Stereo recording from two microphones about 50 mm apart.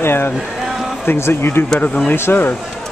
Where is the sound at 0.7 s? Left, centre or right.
Centre.